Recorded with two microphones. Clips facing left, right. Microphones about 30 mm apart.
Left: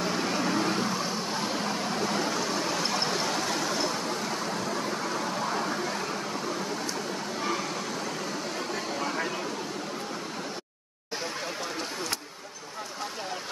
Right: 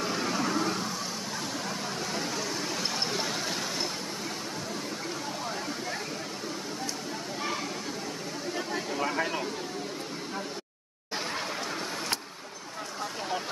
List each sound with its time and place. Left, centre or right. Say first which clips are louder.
0.0 s vehicle: left 2 dB; centre
0.6 s vehicle: left 3 dB; left
2.0 s a sound: left 5 dB; left
9.2 s vehicle: right 1 dB; centre